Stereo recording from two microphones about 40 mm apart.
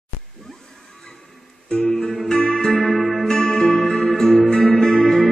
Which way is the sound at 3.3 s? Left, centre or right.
Centre.